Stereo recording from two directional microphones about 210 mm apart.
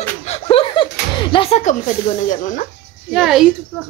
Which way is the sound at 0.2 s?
30° left (ahead or behind).